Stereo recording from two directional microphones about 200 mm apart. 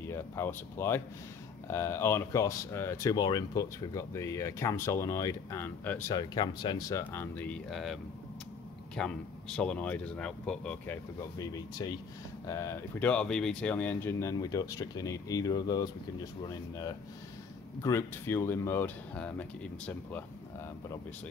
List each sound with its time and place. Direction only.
0.0 s speech: 10° left (ahead or behind)
11.3 s speech: 20° left (ahead or behind)